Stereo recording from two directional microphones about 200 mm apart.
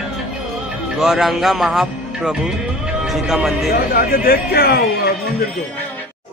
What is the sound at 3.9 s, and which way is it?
Speech, 50° left (ahead or behind).